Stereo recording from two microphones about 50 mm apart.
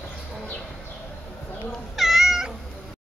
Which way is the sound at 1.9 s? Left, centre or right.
Centre.